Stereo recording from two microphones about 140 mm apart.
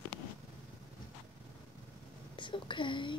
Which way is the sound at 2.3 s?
35° left (ahead or behind).